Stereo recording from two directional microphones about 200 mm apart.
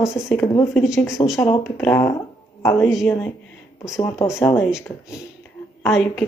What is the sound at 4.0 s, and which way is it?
Speech, 15° left (ahead or behind).